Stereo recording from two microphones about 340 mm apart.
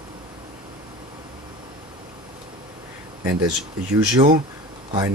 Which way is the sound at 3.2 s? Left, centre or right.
Right.